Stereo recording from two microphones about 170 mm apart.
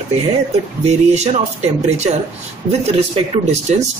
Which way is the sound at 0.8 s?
40° right (ahead or behind).